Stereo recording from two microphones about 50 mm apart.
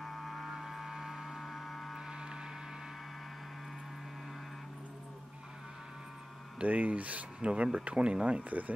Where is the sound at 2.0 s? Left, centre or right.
Centre.